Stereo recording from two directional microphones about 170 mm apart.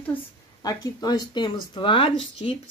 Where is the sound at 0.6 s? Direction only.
25° left (ahead or behind).